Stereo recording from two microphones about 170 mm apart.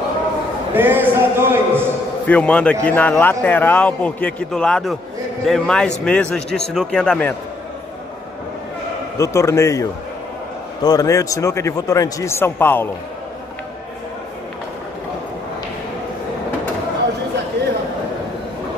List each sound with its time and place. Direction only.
0.7 s speech: 10° right (ahead or behind)
2.2 s a man's voice: 5° left (ahead or behind)
9.2 s a man's voice: 15° left (ahead or behind)